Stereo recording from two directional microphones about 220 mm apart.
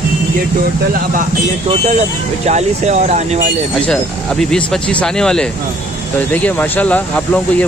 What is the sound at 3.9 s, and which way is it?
Speech, 5° left (ahead or behind).